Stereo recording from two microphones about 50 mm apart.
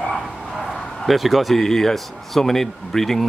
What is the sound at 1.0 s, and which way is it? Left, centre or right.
Speech, centre.